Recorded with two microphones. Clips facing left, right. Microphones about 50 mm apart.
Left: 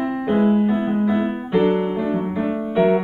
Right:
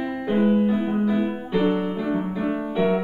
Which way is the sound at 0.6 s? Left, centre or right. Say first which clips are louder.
Left 2 dB; left.